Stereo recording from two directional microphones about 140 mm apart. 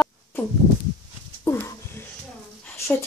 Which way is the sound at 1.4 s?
20° left (ahead or behind).